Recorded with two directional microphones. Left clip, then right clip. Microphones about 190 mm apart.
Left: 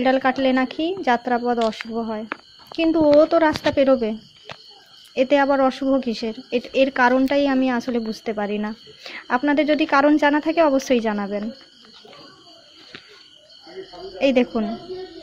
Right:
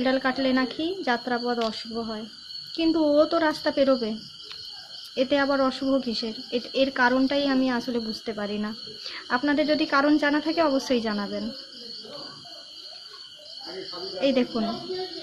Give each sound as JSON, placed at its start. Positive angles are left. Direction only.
{"t": 0.0, "sound": "speech", "side_deg": 30}
{"t": 14.2, "sound": "speech", "side_deg": 30}